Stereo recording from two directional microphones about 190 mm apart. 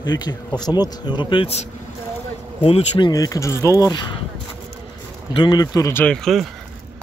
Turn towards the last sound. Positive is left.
turn(degrees=0)  # may be behind; listen again after turning